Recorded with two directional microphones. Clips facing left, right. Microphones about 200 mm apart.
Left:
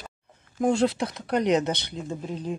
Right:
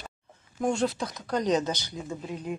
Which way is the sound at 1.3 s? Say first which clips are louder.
Left 3 dB; 65° left (ahead or behind).